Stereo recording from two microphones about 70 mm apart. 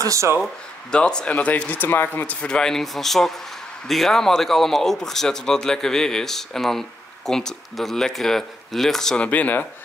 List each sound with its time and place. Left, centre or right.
0.0 s speech: right
0.9 s speech: centre; by 2.3 s left
2.4 s speech: centre
9.2 s speech: left